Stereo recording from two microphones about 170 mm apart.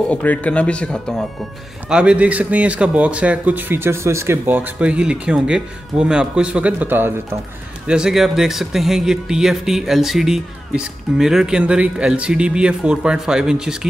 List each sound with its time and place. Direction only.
0.1 s speech: 10° left (ahead or behind)